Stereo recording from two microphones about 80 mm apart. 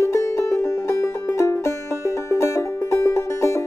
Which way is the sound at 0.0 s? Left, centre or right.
Left.